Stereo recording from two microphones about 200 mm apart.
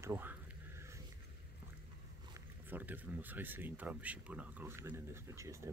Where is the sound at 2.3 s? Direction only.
10° right (ahead or behind).